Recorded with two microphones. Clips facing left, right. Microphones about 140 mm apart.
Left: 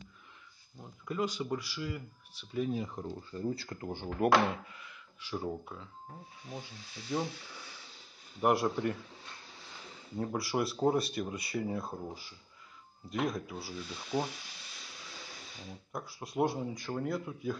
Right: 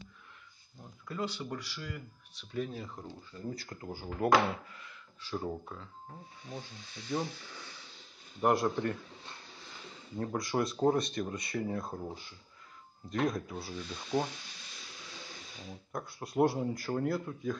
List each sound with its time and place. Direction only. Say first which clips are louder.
1.0 s speech: left 3 dB; 15° left (ahead or behind)
3.3 s speech: left 4 dB; 30° left (ahead or behind)
4.7 s a sound: even; 15° left (ahead or behind)
5.7 s speech: even; 5° left (ahead or behind)
8.4 s speech: even; 5° left (ahead or behind)
10.1 s speech: even; 10° left (ahead or behind)
15.9 s speech: right 2 dB; centre (ahead or behind)